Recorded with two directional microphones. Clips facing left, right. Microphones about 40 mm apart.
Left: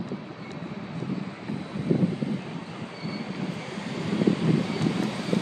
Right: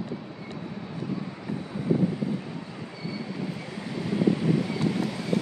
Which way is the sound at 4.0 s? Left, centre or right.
Left.